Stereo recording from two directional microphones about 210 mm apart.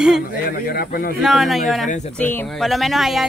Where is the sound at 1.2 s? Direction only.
Centre (ahead or behind).